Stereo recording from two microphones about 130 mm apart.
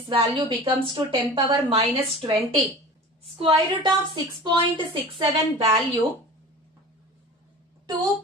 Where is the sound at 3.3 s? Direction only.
45° right (ahead or behind).